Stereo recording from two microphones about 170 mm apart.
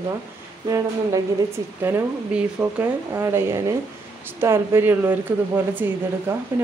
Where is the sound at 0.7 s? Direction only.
20° right (ahead or behind).